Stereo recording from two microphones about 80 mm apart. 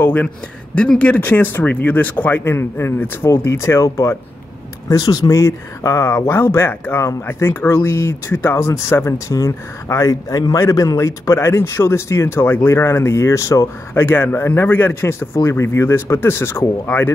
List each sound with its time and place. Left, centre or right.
0.0 s a sound: left
0.7 s speech: centre; by 3.9 s left
5.0 s speech: left
13.9 s speech: left